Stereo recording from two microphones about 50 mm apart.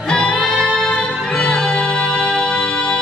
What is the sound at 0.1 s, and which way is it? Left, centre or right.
Music, centre.